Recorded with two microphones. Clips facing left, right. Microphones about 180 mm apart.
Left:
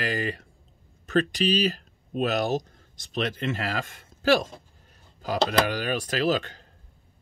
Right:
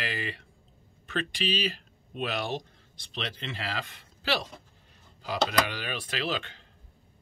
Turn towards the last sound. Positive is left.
turn(degrees=40)  # may be behind; listen again after turning